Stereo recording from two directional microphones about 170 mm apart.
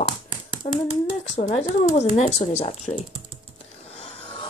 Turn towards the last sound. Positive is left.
turn(degrees=30)  # may be behind; listen again after turning